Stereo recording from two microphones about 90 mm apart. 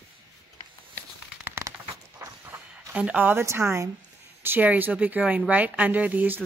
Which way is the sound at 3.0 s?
15° right (ahead or behind).